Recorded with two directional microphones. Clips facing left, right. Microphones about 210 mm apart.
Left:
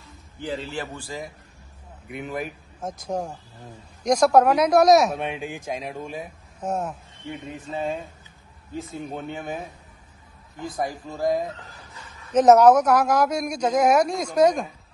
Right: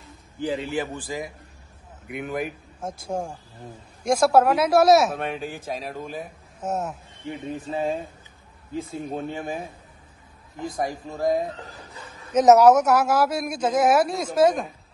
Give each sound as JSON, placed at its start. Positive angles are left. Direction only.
{"t": 0.0, "sound": "a man's voice", "side_deg": -15}
{"t": 2.0, "sound": "speech", "side_deg": 0}
{"t": 6.6, "sound": "speech", "side_deg": -5}
{"t": 7.4, "sound": "speech", "side_deg": -30}
{"t": 8.7, "sound": "speech", "side_deg": 0}
{"t": 10.6, "sound": "speech", "side_deg": 0}
{"t": 12.3, "sound": "speech", "side_deg": -10}